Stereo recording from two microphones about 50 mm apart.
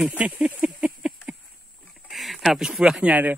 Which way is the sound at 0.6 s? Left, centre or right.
Centre.